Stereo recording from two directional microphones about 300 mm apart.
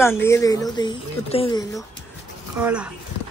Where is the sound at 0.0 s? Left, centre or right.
Centre.